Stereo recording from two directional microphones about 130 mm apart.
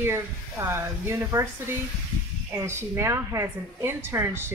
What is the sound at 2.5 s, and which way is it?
Speech, 20° right (ahead or behind).